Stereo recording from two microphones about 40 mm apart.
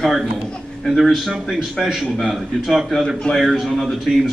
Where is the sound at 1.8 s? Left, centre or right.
Centre.